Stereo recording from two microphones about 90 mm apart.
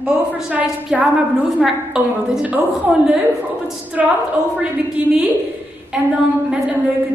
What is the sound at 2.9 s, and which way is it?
A woman's voice, 15° right (ahead or behind).